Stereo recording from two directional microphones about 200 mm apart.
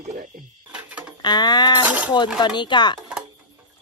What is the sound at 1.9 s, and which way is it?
Speech, 5° right (ahead or behind).